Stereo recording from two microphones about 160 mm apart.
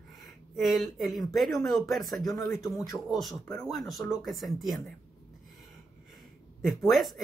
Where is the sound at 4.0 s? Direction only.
25° left (ahead or behind).